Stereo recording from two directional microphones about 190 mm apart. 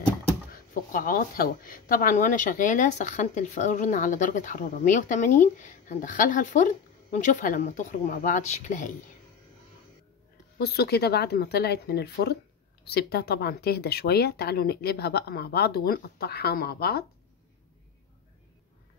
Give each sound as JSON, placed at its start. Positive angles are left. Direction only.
{"t": 0.5, "sound": "a woman's voice", "side_deg": 50}
{"t": 10.6, "sound": "speech", "side_deg": 55}